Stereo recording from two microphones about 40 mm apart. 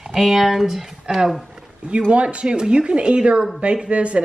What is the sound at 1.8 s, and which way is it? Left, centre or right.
Speech, right.